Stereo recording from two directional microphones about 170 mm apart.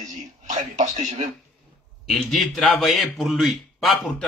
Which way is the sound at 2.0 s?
Centre (ahead or behind).